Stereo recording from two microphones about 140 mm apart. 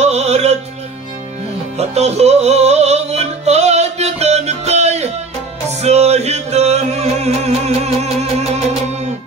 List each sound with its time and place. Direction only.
0.0 s music: 50° right (ahead or behind)
1.8 s music: 50° right (ahead or behind)